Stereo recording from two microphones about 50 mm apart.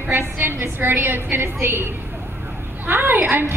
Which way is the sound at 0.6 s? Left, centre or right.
Right.